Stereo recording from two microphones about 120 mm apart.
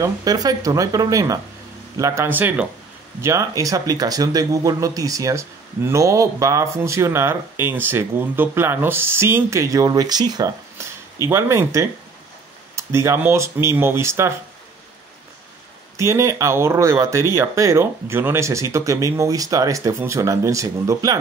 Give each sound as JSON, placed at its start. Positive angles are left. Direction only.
{"t": 0.0, "sound": "speech", "side_deg": -30}
{"t": 16.0, "sound": "speech", "side_deg": -25}